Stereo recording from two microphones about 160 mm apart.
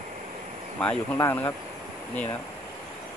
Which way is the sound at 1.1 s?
15° left (ahead or behind).